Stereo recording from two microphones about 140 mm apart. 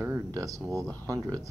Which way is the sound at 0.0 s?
20° right (ahead or behind).